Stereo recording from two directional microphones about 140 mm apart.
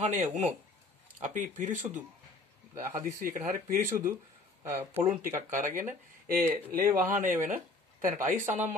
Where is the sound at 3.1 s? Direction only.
75° right (ahead or behind).